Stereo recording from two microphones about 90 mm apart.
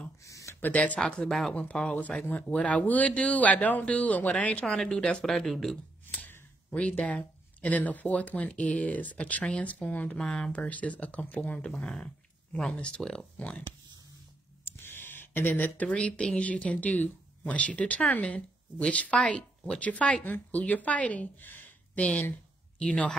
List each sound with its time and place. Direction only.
0.2 s a sound: 35° left (ahead or behind)
0.6 s speech: 20° left (ahead or behind)
6.1 s speech: 15° left (ahead or behind)
14.6 s speech: 25° left (ahead or behind)